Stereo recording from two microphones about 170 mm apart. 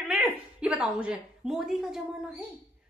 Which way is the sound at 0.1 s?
5° right (ahead or behind).